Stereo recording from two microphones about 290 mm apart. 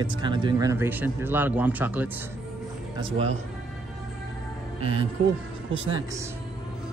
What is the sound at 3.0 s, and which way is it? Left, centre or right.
Speech, centre.